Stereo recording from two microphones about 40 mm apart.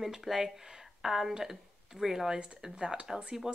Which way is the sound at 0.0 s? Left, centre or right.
Centre.